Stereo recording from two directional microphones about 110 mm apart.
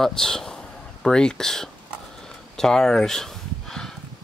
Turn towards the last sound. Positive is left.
turn(degrees=5)  # may be behind; listen again after turning